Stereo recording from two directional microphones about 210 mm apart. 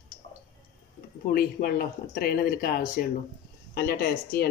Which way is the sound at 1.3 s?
45° left (ahead or behind).